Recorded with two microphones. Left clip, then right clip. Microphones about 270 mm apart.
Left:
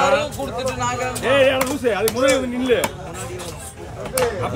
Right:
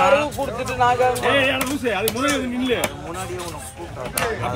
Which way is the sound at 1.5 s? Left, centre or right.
Centre.